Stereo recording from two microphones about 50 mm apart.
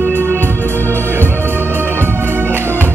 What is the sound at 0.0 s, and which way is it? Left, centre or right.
Music, right.